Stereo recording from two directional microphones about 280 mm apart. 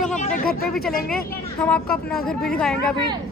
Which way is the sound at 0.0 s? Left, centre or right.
Left.